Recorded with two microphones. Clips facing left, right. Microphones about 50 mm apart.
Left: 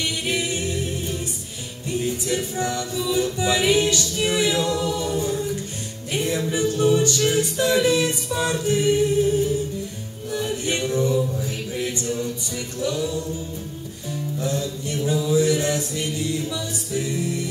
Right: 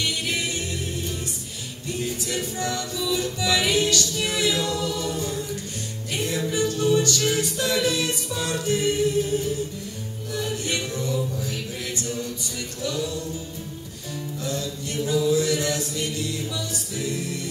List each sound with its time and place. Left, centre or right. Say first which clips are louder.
0.0 s music: left 2 dB; centre
6.5 s a capella: left 2 dB; left
10.3 s music: left 3 dB; centre
14.4 s music: left 3 dB; left
15.0 s mantra: left 2 dB; left
16.9 s music: left 4 dB; left